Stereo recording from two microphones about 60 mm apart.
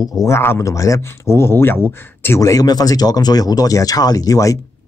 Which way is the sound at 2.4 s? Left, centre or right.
Left.